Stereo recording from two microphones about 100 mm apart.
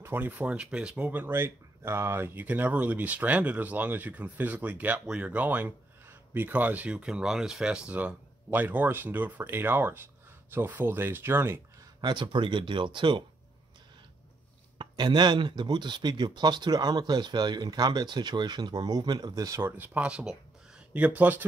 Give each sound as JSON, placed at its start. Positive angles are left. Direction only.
{"t": 0.0, "sound": "speech", "side_deg": -20}
{"t": 12.0, "sound": "speech", "side_deg": -50}
{"t": 14.8, "sound": "speech", "side_deg": -50}
{"t": 19.6, "sound": "speech", "side_deg": -15}